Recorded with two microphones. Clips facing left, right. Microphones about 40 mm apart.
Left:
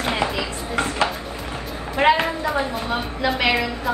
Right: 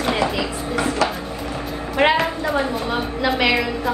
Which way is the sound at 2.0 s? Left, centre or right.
Right.